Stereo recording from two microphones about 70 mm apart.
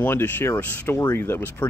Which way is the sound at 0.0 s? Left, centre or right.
Left.